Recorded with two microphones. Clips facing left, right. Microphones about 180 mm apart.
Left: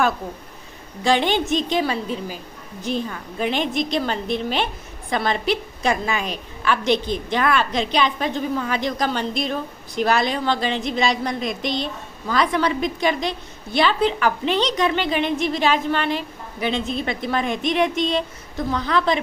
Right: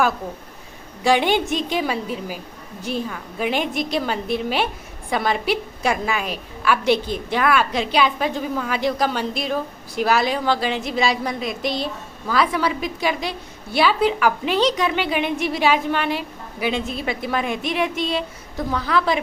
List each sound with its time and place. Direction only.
1.0 s a woman's voice: 10° right (ahead or behind)